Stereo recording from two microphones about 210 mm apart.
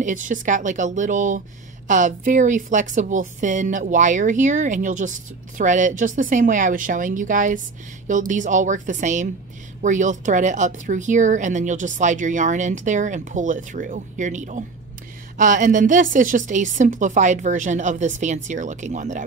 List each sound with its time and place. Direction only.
0.0 s a woman's voice: 40° right (ahead or behind)